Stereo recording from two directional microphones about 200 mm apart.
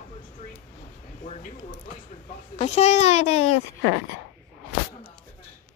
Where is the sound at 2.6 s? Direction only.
35° left (ahead or behind).